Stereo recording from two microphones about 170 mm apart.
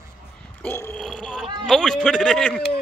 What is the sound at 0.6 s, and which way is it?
Speech, 10° left (ahead or behind).